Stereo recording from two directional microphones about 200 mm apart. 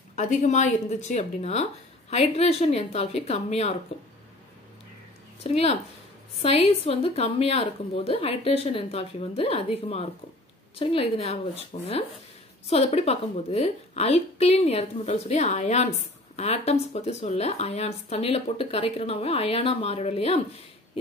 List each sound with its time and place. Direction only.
0.1 s speech: 40° left (ahead or behind)
5.4 s a woman's voice: 30° left (ahead or behind)